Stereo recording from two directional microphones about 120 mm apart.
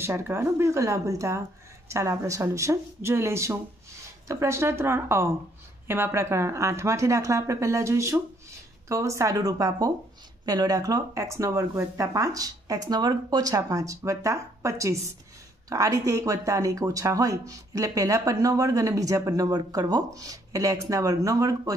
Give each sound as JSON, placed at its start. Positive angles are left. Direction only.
{"t": 0.0, "sound": "speech", "side_deg": -20}